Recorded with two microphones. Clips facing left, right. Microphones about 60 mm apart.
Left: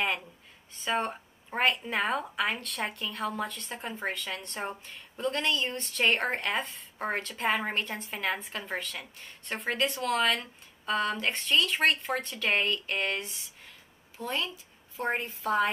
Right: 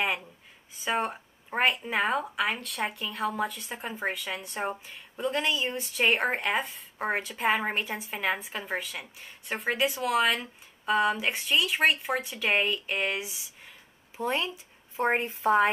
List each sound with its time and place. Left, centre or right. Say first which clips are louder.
0.0 s speech: right 1 dB; centre
14.1 s a woman's voice: right 4 dB; right